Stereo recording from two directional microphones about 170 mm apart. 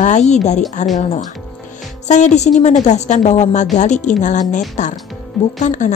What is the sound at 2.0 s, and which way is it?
A woman's voice, 45° left (ahead or behind).